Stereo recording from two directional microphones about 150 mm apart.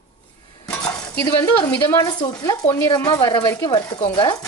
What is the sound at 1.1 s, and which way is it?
Speech, 20° left (ahead or behind).